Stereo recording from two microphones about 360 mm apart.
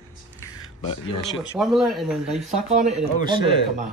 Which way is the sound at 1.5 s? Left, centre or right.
Centre.